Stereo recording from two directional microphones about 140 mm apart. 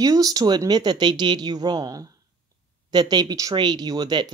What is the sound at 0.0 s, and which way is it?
Speech, 25° right (ahead or behind).